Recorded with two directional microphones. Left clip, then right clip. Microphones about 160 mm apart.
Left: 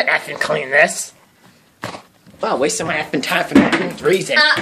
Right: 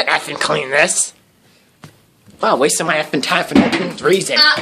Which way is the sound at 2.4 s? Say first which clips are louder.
Right 4 dB; 35° right (ahead or behind).